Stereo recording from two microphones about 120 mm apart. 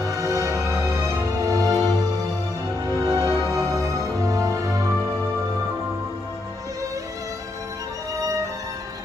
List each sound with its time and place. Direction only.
0.0 s music: 30° right (ahead or behind)
3.1 s music: 25° right (ahead or behind)